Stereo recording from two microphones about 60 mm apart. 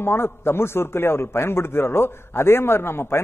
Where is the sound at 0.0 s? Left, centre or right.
Left.